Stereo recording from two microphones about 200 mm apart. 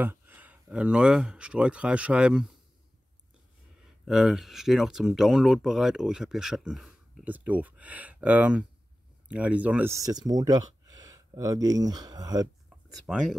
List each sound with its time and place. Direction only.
0.0 s speech: 10° right (ahead or behind)
3.7 s speech: centre (ahead or behind); by 12.4 s 20° right (ahead or behind)
12.6 s a sound: 5° right (ahead or behind)